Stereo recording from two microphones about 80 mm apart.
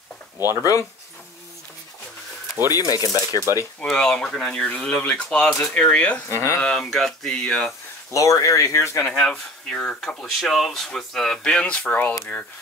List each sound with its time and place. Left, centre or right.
0.4 s speech: right
2.7 s speech: left
3.8 s speech: centre
5.5 s speech: centre
6.2 s speech: left
6.6 s speech: centre
8.1 s speech: left
9.1 s speech: centre
10.0 s speech: centre; by 12.2 s left